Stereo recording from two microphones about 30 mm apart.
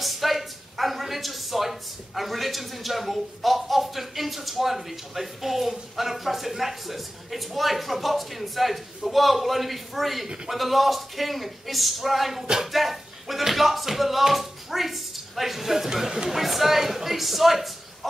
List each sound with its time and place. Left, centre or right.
0.0 s speech: centre